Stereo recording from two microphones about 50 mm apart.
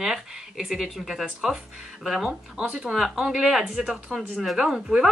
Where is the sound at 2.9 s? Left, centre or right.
Centre.